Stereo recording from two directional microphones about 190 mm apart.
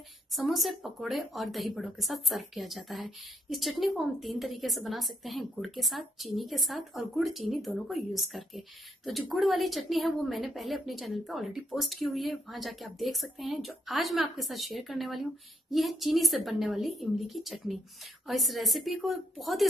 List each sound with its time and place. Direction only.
0.3 s speech: centre (ahead or behind)